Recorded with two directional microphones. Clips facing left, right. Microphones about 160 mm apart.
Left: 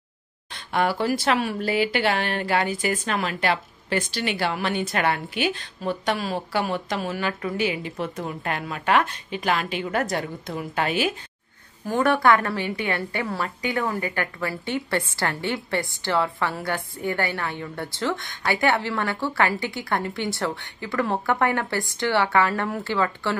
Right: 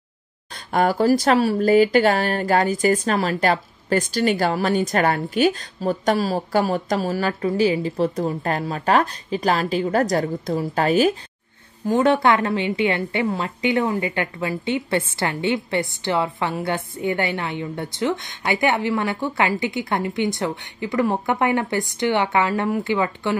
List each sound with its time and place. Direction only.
0.5 s speech: 45° right (ahead or behind)
11.8 s a woman's voice: 20° right (ahead or behind)